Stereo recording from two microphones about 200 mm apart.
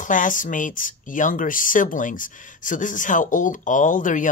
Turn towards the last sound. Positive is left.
turn(degrees=40)  # may be behind; listen again after turning